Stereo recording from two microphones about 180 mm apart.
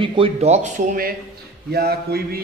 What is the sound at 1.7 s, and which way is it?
Speech, 60° right (ahead or behind).